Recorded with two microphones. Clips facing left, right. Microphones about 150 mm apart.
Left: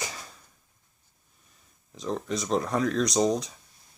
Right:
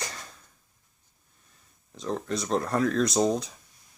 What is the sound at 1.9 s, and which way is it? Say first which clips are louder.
Speech: even; centre (ahead or behind).